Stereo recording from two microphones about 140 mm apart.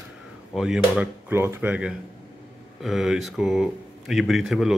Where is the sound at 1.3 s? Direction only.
15° right (ahead or behind).